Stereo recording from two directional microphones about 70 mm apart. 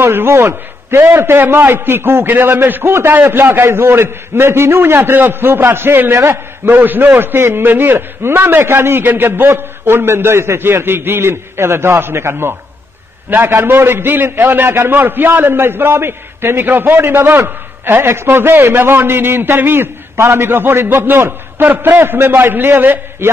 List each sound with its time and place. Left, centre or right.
0.0 s a man's voice: right